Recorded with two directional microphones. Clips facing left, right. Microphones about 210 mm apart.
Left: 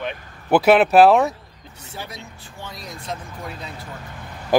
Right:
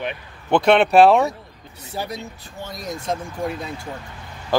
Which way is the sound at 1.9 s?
40° right (ahead or behind).